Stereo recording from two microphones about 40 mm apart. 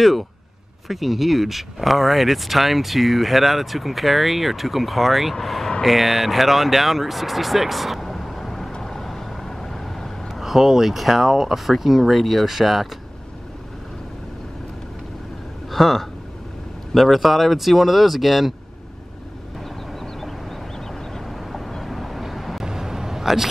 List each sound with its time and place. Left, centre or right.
0.8 s speech: centre
8.8 s vehicle: centre
10.4 s speech: centre
15.7 s speech: centre
21.3 s vehicle: centre
22.7 s a sound: centre